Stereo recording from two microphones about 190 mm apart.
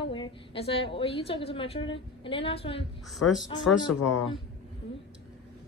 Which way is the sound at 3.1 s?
Centre (ahead or behind).